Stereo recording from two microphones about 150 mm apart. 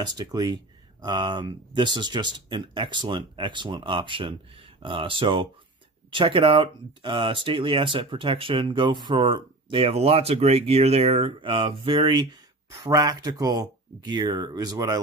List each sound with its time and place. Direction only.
0.0 s speech: 25° right (ahead or behind)